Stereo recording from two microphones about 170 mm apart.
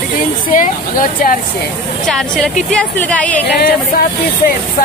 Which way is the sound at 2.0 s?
5° left (ahead or behind).